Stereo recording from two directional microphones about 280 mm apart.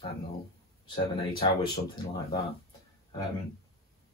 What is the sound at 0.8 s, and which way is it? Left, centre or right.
Speech, centre.